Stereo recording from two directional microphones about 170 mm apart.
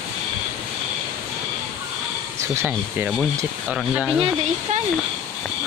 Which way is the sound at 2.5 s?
15° right (ahead or behind).